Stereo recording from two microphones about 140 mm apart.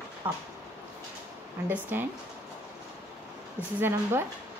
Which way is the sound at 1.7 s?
15° right (ahead or behind).